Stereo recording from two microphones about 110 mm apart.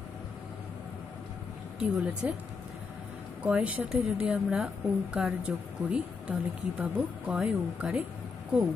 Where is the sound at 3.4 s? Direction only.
10° right (ahead or behind).